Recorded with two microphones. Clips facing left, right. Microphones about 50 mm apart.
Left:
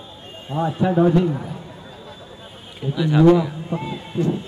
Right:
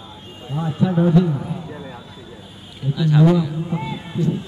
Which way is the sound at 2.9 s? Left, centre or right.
Centre.